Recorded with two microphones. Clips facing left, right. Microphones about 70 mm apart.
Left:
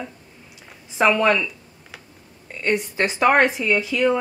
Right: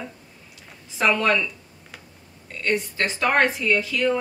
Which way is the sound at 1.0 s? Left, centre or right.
Centre.